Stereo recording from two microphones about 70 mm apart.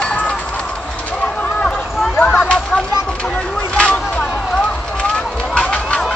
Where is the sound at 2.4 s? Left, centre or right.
Centre.